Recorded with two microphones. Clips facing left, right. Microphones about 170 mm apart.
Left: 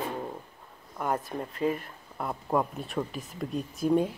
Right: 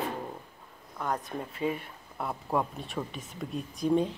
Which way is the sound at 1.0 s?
5° left (ahead or behind).